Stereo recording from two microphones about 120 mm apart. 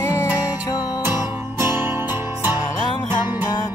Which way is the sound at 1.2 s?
20° right (ahead or behind).